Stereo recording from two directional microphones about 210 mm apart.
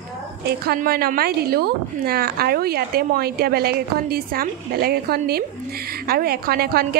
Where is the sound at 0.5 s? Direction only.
45° right (ahead or behind).